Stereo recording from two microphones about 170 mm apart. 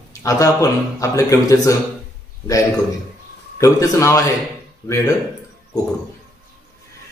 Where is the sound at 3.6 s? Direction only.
20° left (ahead or behind).